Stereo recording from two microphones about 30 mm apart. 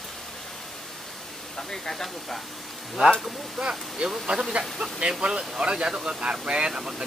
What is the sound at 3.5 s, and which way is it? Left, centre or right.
Speech, right.